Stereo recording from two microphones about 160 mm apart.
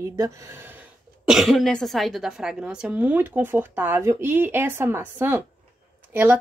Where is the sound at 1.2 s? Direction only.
Centre (ahead or behind).